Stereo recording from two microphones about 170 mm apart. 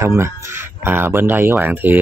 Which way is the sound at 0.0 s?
15° right (ahead or behind).